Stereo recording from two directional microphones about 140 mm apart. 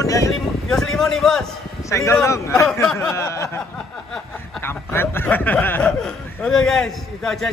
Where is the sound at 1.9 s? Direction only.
20° left (ahead or behind).